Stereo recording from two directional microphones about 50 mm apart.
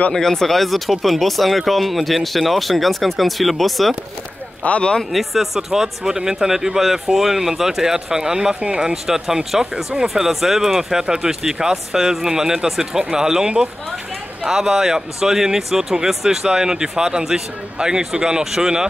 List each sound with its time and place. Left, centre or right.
0.1 s speech: centre
4.6 s speech: left
5.1 s speech: centre; by 8.9 s right
8.9 s speech: centre